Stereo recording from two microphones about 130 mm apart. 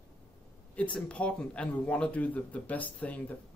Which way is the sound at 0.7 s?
10° left (ahead or behind).